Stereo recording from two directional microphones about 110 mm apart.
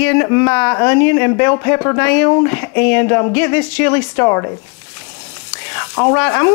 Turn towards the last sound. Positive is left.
turn(degrees=20)  # may be behind; listen again after turning